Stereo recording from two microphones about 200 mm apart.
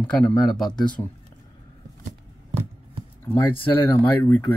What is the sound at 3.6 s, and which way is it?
Speech, 10° left (ahead or behind).